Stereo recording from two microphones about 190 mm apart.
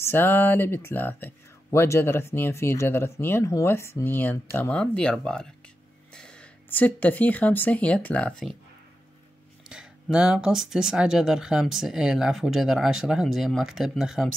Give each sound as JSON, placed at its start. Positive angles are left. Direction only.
{"t": 0.0, "sound": "speech", "side_deg": 10}
{"t": 9.7, "sound": "speech", "side_deg": -5}